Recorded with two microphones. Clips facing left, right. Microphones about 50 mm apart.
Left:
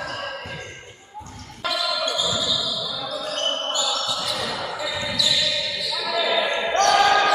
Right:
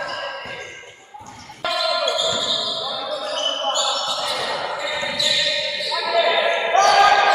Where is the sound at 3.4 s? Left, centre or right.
Centre.